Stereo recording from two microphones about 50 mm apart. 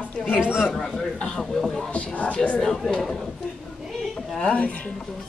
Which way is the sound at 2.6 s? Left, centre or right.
Centre.